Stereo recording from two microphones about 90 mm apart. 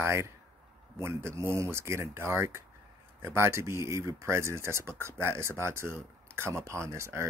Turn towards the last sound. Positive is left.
turn(degrees=-30)  # may be behind; listen again after turning